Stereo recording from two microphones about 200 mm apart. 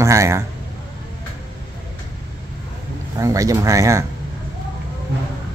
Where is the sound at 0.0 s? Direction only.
15° right (ahead or behind).